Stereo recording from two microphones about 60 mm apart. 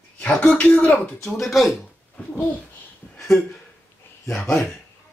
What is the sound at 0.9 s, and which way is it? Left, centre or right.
Speech, centre.